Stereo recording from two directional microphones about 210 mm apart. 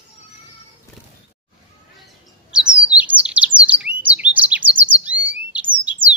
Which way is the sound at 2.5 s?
5° right (ahead or behind).